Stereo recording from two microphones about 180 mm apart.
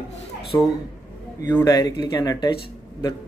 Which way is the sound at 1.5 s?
15° left (ahead or behind).